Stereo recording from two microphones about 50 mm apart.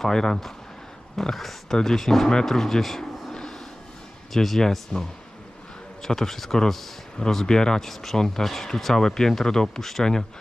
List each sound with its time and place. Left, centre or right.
0.0 s speech: centre
6.0 s speech: centre